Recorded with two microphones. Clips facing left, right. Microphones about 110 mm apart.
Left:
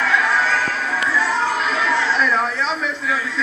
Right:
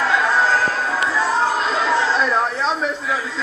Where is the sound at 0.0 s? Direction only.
35° right (ahead or behind).